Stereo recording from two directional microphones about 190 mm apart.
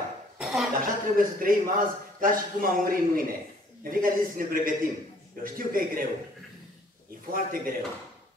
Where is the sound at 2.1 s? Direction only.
45° right (ahead or behind).